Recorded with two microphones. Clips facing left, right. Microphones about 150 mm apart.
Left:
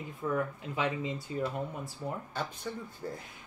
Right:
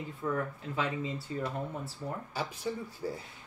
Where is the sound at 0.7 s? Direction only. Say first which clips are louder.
Left 1 dB; 15° left (ahead or behind).